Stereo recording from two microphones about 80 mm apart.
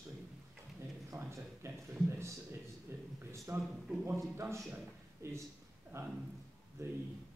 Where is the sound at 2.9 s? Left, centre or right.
Right.